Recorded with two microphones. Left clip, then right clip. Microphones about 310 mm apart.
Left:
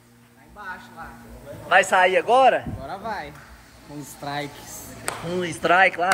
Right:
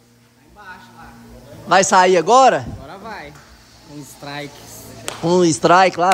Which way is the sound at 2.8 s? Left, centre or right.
Centre.